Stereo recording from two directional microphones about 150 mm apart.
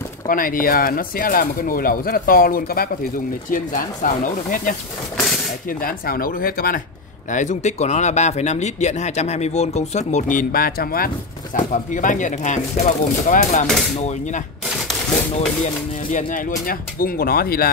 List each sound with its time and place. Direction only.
0.3 s speech: 70° left (ahead or behind)
3.4 s speech: 65° left (ahead or behind)
5.7 s speech: 75° left (ahead or behind)
7.2 s speech: 55° left (ahead or behind); by 11.1 s 80° left
11.7 s speech: 60° left (ahead or behind); by 17.6 s 80° left